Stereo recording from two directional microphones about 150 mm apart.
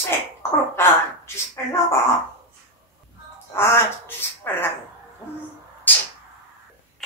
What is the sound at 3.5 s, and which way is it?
Speech, 15° left (ahead or behind).